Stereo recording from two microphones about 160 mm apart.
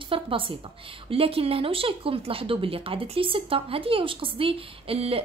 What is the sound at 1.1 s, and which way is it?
A woman's voice, 35° right (ahead or behind).